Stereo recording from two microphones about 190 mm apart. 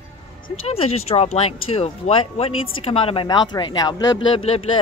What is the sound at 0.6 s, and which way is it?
Speech, 30° left (ahead or behind).